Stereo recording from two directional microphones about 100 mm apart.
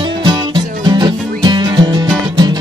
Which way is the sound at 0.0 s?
55° right (ahead or behind).